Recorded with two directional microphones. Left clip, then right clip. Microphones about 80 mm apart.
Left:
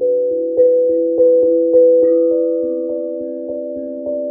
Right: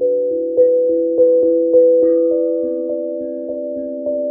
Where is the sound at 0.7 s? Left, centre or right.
Left.